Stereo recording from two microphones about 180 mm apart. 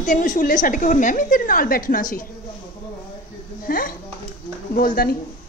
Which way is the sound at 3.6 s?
50° left (ahead or behind).